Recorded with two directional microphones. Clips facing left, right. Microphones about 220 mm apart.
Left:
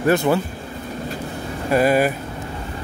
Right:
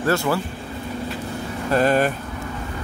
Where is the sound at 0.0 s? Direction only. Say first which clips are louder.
Left 4 dB; 20° left (ahead or behind).